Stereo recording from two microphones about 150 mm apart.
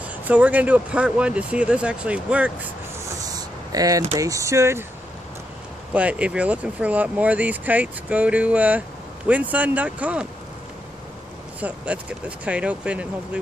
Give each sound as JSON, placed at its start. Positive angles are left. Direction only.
{"t": 0.0, "sound": "speech", "side_deg": -10}
{"t": 3.0, "sound": "vehicle", "side_deg": -25}
{"t": 4.1, "sound": "speech", "side_deg": -20}
{"t": 5.9, "sound": "speech", "side_deg": -10}
{"t": 11.6, "sound": "speech", "side_deg": -10}